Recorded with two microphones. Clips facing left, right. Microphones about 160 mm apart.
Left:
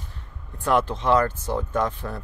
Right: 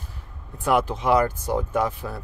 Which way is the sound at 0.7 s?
10° right (ahead or behind).